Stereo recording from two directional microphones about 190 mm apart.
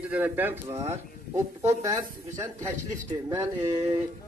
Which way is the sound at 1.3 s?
35° right (ahead or behind).